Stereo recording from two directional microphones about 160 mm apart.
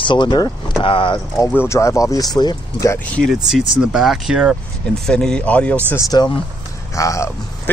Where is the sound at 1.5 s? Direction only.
15° left (ahead or behind).